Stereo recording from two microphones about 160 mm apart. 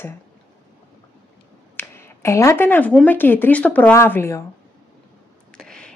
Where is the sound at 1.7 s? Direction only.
15° left (ahead or behind).